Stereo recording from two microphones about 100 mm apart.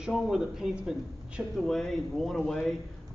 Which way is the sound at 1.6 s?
5° left (ahead or behind).